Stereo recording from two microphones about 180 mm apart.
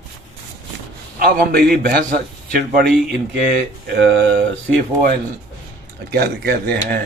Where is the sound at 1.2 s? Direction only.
55° right (ahead or behind).